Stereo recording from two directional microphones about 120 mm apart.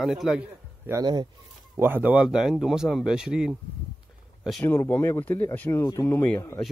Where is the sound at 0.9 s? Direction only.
15° right (ahead or behind).